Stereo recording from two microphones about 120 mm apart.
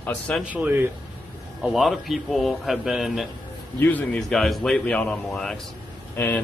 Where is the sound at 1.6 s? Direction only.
Centre (ahead or behind).